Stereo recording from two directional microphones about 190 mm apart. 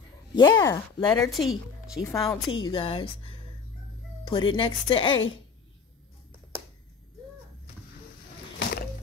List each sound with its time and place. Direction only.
0.3 s speech: 20° left (ahead or behind)
1.3 s a woman's voice: centre (ahead or behind)
2.0 s speech: 20° left (ahead or behind)
8.5 s a sound: 55° left (ahead or behind)